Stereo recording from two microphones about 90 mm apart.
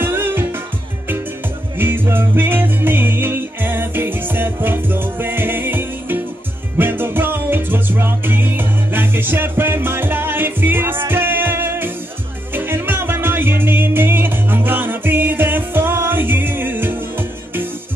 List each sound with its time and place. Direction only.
0.0 s music: 25° right (ahead or behind)
1.8 s music: 25° right (ahead or behind)